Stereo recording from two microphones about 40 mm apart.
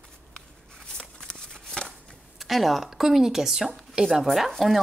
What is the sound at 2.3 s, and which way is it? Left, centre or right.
Speech, centre.